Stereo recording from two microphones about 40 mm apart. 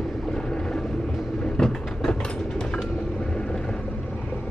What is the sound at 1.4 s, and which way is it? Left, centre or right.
Vehicle, left.